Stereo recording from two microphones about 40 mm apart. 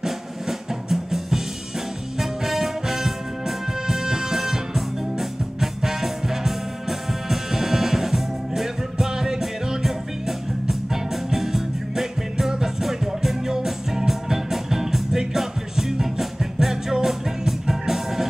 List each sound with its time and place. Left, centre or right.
0.0 s drum: centre
2.1 s music: centre